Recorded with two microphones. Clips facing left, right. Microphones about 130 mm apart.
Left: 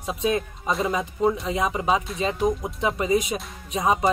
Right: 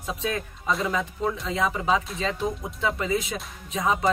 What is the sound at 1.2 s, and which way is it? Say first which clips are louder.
Speech: left 6 dB; 30° left (ahead or behind).